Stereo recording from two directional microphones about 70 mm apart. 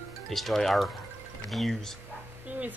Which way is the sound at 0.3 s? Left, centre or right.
Centre.